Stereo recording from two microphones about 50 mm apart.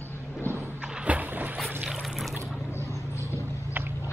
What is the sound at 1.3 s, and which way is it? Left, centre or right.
Boat, right.